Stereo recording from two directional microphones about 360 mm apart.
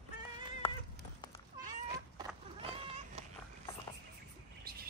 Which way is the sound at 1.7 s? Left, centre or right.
Centre.